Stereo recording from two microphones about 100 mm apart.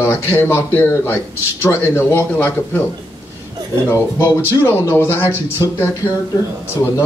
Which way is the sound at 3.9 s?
30° left (ahead or behind).